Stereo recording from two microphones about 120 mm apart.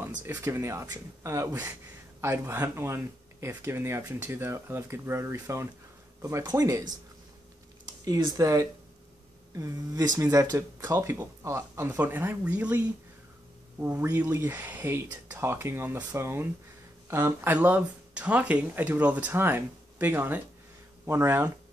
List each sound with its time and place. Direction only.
0.0 s speech: 20° right (ahead or behind)